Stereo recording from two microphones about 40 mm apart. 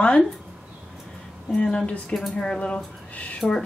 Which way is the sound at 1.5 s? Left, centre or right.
Left.